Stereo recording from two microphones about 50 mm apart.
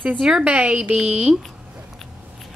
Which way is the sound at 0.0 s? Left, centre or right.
Centre.